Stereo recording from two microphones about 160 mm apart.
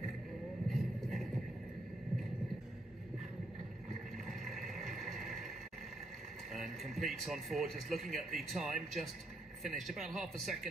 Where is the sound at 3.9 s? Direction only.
Centre (ahead or behind).